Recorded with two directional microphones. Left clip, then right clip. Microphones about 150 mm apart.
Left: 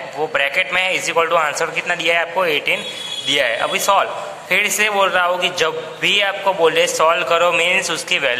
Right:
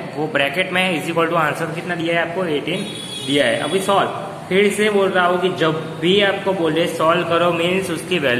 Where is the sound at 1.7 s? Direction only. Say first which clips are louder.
Left 3 dB; 45° left (ahead or behind).